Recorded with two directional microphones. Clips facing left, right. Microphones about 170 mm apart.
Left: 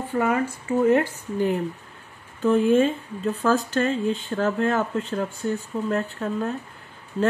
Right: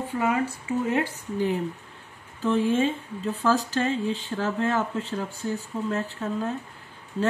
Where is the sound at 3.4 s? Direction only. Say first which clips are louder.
Left 2 dB; 65° left (ahead or behind).